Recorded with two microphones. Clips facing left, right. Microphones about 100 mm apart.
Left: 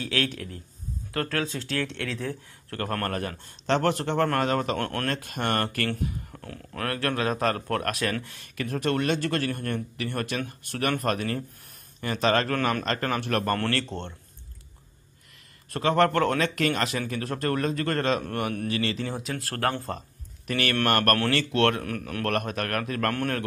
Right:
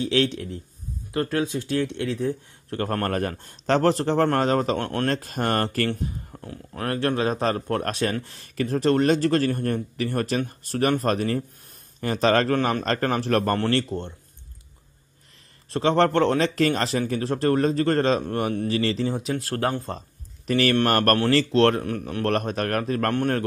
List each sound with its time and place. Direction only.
0.0 s a man's voice: 25° right (ahead or behind)
3.1 s speech: 45° right (ahead or behind)
4.7 s a man's voice: 20° right (ahead or behind)
5.0 s speech: 35° right (ahead or behind)
6.4 s a man's voice: 20° right (ahead or behind)
13.6 s a man's voice: 20° right (ahead or behind)
13.8 s a man's voice: 10° right (ahead or behind)
15.7 s speech: 30° right (ahead or behind)
19.0 s a man's voice: 20° right (ahead or behind)
20.4 s a man's voice: 35° right (ahead or behind)